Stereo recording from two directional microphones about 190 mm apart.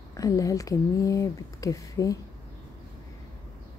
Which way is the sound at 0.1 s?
15° left (ahead or behind).